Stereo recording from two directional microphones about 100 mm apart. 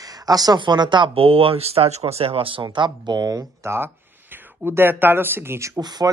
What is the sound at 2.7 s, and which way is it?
Speech, 50° right (ahead or behind).